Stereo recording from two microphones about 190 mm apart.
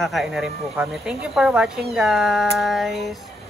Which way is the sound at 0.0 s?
Centre (ahead or behind).